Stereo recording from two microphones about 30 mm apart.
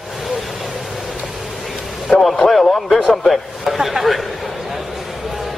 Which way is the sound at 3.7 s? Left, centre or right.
Centre.